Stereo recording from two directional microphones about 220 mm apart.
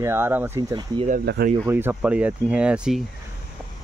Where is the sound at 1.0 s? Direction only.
45° right (ahead or behind).